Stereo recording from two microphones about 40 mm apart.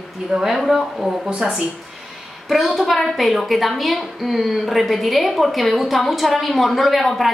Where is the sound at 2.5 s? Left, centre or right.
Centre.